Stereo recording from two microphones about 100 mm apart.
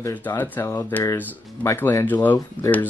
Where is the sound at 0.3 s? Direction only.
25° left (ahead or behind).